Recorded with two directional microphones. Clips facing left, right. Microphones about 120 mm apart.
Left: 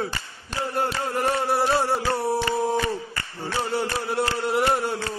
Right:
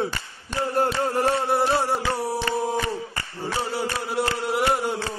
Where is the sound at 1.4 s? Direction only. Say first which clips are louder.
Even; 20° right (ahead or behind).